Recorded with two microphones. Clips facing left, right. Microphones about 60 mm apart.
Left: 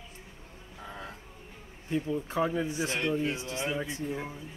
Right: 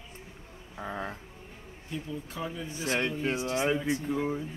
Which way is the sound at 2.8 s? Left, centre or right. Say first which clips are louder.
Right 5 dB; right.